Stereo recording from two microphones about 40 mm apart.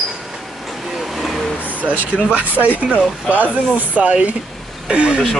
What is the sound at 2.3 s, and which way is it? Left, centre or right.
Speech, right.